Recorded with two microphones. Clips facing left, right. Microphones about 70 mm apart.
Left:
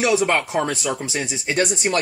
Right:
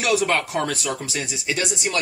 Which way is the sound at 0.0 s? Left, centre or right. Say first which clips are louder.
Left 2 dB; left.